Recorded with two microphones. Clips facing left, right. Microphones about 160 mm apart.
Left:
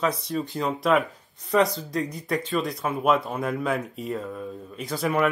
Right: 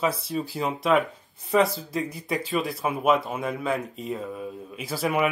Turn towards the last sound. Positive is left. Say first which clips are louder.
# left 1 dB
turn(degrees=-5)  # may be behind; listen again after turning